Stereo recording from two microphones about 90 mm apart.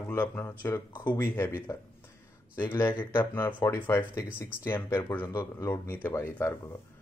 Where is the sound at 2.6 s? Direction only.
30° left (ahead or behind).